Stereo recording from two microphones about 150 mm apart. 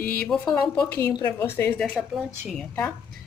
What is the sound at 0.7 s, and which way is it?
A woman's voice, 10° left (ahead or behind).